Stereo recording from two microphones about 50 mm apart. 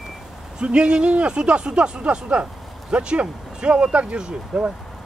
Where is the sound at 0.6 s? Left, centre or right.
Centre.